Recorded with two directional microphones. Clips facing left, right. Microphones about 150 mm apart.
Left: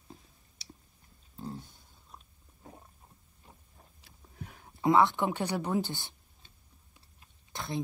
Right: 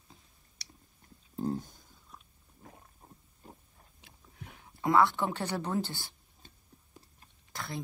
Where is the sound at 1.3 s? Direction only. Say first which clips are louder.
Right 8 dB; 40° right (ahead or behind).